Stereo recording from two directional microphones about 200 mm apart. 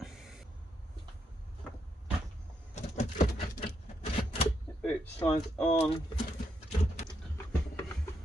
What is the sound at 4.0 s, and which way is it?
Typewriter, 30° left (ahead or behind).